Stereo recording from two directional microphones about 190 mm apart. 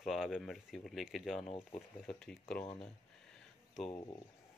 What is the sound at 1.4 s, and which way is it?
Speech, 35° left (ahead or behind).